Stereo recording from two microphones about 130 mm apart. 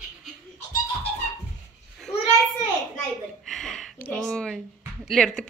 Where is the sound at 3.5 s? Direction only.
5° left (ahead or behind).